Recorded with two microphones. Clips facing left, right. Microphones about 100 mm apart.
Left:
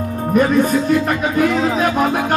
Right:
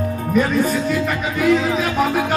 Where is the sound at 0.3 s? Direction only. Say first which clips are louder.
Left 4 dB; 45° left (ahead or behind).